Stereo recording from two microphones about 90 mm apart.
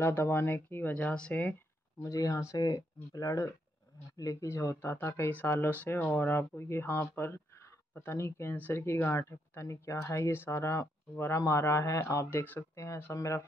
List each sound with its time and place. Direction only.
0.0 s speech: 30° left (ahead or behind)
2.0 s speech: 40° left (ahead or behind)